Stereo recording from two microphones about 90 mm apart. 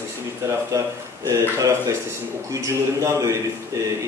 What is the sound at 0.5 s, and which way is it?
Speech, 35° right (ahead or behind).